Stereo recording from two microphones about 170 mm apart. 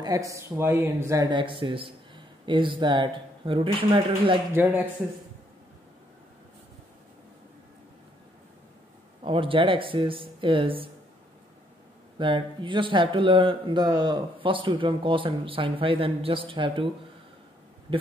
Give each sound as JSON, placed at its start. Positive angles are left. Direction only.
{"t": 0.0, "sound": "speech", "side_deg": -20}
{"t": 9.2, "sound": "speech", "side_deg": -30}
{"t": 12.2, "sound": "speech", "side_deg": -30}